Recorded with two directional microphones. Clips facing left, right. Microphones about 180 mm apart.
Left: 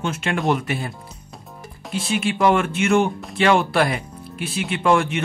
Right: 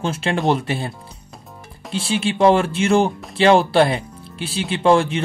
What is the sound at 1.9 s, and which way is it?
Speech, 30° right (ahead or behind).